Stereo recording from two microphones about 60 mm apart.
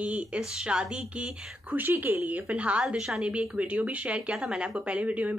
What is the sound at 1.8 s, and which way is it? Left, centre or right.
Speech, right.